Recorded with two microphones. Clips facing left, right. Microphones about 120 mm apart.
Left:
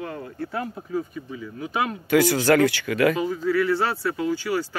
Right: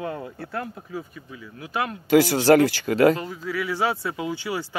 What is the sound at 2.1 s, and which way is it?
Speech, 30° right (ahead or behind).